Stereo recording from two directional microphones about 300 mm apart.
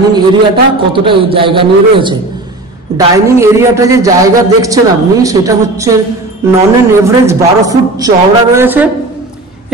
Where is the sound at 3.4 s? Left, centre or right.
Centre.